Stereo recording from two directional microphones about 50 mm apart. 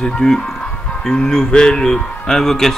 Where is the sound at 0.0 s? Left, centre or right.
Centre.